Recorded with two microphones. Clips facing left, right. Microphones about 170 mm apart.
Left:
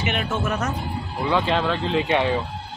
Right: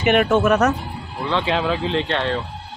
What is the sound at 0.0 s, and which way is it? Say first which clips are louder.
Speech: right 9 dB; 60° right (ahead or behind).